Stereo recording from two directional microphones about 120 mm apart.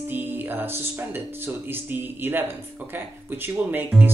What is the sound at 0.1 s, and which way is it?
Speech, 15° right (ahead or behind).